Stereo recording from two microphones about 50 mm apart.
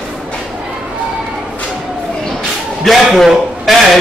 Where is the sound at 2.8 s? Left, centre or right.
Centre.